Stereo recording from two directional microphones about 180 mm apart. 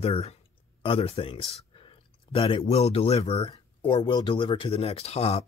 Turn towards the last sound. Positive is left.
turn(degrees=35)  # may be behind; listen again after turning